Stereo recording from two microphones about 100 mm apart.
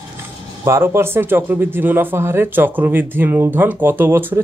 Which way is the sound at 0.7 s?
25° right (ahead or behind).